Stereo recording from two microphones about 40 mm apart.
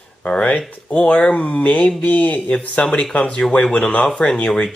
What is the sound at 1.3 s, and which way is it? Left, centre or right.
Speech, left.